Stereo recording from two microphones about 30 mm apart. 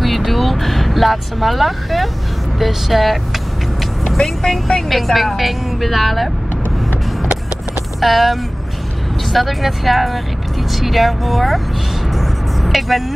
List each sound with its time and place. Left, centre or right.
0.0 s vehicle: centre
2.6 s a woman's voice: centre
4.2 s speech: left
4.8 s a woman's voice: centre
8.0 s a woman's voice: centre
12.6 s speech: centre